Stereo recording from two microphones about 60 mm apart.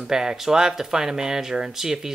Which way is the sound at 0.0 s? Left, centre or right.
Centre.